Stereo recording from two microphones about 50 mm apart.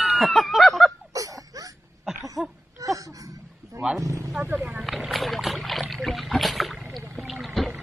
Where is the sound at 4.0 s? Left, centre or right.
Right.